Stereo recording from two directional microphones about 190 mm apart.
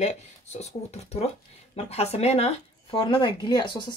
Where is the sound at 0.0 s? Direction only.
35° left (ahead or behind).